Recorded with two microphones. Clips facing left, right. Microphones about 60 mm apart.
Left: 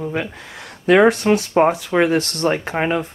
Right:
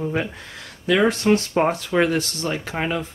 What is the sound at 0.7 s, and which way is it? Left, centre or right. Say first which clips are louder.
Speech: left 6 dB; left.